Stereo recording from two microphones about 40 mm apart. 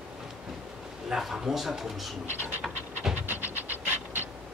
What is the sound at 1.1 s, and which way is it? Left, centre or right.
Speech, centre.